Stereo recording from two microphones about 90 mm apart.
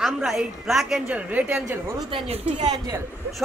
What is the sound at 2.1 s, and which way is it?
Speech, 90° right.